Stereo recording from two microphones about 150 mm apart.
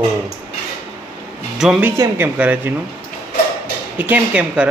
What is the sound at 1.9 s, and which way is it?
Speech, 15° right (ahead or behind).